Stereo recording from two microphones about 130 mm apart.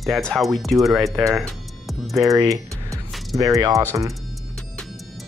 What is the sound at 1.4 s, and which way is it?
Music, centre (ahead or behind).